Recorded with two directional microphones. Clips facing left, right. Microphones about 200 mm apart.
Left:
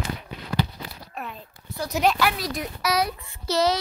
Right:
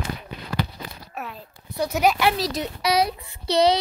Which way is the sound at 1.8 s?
5° right (ahead or behind).